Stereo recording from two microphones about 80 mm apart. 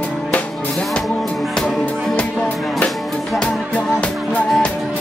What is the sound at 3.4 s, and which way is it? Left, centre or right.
Music, centre.